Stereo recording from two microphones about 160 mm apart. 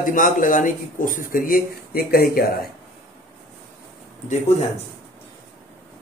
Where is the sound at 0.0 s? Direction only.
55° left (ahead or behind); by 2.4 s 75° left (ahead or behind).